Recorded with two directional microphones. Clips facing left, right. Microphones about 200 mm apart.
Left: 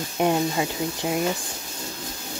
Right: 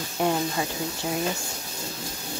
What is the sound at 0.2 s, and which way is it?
Speech, 15° left (ahead or behind).